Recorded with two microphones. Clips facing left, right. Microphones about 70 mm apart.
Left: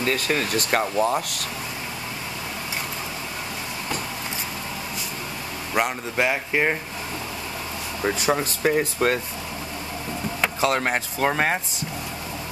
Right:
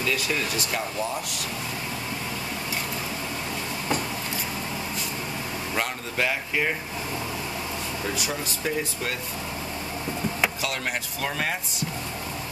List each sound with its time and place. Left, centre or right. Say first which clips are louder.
0.0 s speech: left 3 dB; left
5.8 s speech: left 5 dB; centre
8.0 s speech: left 7 dB; left
8.3 s speech: left 8 dB; left
10.6 s speech: left 7 dB; left